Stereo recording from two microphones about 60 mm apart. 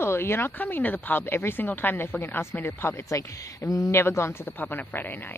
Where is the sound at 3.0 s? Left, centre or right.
Left.